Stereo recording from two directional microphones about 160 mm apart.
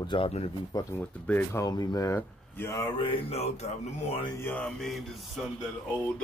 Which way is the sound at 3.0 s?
35° left (ahead or behind).